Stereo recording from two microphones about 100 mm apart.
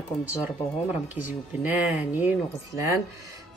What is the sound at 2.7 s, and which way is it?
Speech, 35° right (ahead or behind).